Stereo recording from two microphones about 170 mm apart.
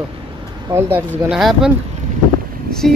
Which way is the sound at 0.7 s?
15° right (ahead or behind).